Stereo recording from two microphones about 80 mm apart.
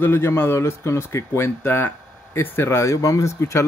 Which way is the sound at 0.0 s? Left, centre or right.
Left.